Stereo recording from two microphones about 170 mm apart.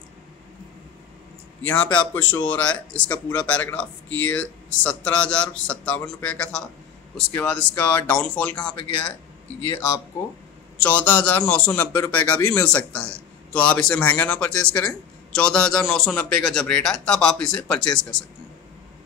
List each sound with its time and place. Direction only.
1.7 s a man's voice: 10° left (ahead or behind)
8.5 s speech: 30° left (ahead or behind)
10.8 s a man's voice: 10° left (ahead or behind)